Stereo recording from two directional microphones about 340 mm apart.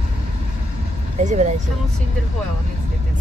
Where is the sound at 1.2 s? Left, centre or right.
Right.